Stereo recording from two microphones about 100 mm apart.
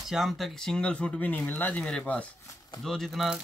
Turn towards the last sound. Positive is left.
turn(degrees=0)  # may be behind; listen again after turning